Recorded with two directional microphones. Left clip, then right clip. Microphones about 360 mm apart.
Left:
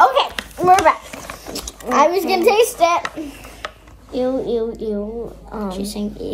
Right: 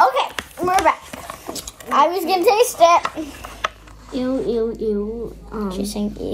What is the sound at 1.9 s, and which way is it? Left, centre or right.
Speech, centre.